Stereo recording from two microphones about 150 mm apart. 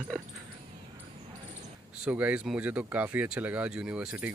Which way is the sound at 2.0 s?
10° right (ahead or behind).